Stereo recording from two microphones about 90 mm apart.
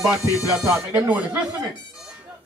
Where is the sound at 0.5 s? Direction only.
15° right (ahead or behind).